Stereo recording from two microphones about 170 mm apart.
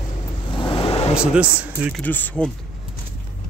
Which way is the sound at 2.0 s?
10° left (ahead or behind).